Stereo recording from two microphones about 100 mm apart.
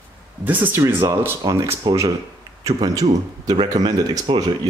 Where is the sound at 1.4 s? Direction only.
35° right (ahead or behind).